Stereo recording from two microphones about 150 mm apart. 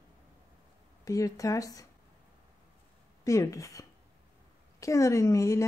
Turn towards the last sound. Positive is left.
turn(degrees=20)  # may be behind; listen again after turning